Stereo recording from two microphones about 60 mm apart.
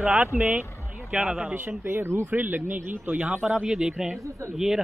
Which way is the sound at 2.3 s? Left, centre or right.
Right.